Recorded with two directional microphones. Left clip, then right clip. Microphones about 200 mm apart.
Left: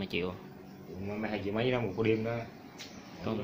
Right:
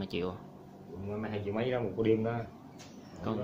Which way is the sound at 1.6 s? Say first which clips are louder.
Left 1 dB; 55° left (ahead or behind).